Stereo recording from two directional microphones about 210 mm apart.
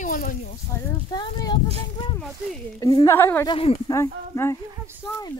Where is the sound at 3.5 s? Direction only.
25° left (ahead or behind).